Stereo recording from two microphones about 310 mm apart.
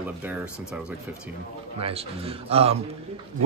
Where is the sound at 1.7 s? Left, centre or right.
Centre.